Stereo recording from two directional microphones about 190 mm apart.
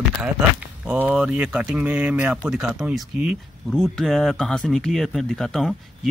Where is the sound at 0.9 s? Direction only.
5° right (ahead or behind).